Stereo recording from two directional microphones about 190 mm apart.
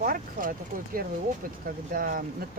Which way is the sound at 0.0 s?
45° right (ahead or behind).